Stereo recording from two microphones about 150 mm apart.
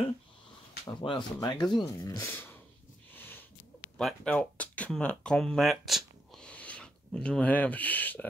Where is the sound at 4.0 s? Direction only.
5° left (ahead or behind).